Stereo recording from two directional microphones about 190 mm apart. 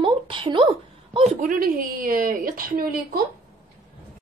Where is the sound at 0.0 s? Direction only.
25° right (ahead or behind); by 3.2 s 50° right (ahead or behind).